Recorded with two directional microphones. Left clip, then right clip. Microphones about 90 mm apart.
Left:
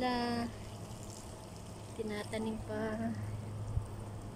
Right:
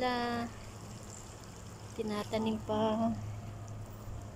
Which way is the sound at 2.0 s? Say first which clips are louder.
Right 5 dB; 15° right (ahead or behind).